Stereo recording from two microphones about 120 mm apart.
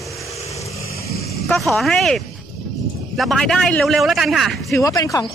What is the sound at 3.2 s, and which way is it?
A man's voice, centre (ahead or behind).